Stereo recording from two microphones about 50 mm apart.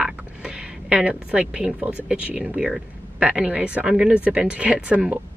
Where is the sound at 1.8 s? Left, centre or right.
Right.